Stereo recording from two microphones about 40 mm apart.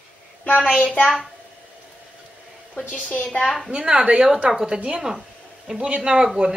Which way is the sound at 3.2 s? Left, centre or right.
Left.